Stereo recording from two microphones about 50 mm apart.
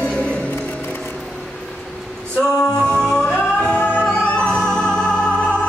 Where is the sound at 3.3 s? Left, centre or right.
Centre.